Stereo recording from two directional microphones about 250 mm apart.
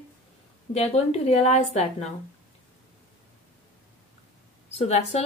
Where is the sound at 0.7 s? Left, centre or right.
Left.